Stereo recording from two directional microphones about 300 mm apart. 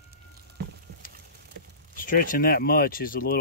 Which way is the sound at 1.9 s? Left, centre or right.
Left.